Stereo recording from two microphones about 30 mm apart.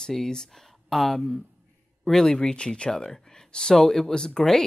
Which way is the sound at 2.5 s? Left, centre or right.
Left.